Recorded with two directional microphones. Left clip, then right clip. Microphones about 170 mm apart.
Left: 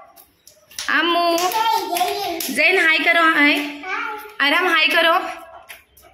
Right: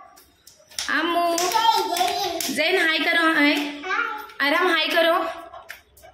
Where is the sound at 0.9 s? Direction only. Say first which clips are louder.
Left 4 dB; 15° left (ahead or behind).